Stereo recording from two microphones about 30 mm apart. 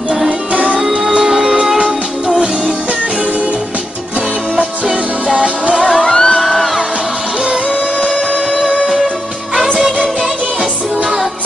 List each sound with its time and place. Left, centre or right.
0.7 s music: centre
4.8 s music: right
5.9 s music: left
6.4 s music: centre